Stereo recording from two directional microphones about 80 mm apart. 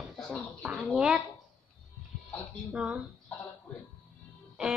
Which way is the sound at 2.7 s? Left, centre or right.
Centre.